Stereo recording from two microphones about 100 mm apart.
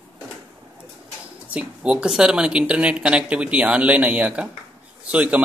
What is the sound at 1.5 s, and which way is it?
A man's voice, 10° right (ahead or behind).